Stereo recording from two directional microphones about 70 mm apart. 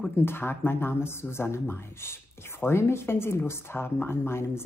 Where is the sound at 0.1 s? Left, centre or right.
Left.